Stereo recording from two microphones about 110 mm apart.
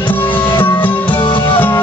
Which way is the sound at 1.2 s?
50° left (ahead or behind).